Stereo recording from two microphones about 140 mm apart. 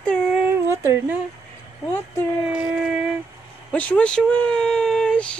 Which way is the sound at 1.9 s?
15° left (ahead or behind).